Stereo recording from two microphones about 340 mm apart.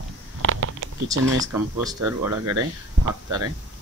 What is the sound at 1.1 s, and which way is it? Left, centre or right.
Speech, centre.